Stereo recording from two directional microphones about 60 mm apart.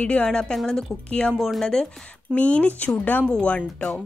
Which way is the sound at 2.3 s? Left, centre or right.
Left.